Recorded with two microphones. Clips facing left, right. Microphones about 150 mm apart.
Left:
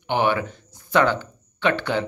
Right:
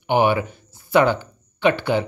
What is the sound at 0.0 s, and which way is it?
Speech, 10° right (ahead or behind).